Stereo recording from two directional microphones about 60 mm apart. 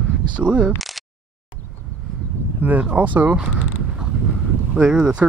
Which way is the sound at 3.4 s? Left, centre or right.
Centre.